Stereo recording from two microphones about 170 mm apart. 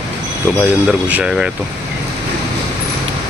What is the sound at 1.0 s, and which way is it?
Speech, 5° right (ahead or behind).